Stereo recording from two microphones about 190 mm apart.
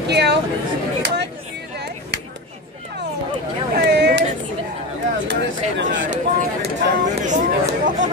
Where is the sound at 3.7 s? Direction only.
60° right (ahead or behind).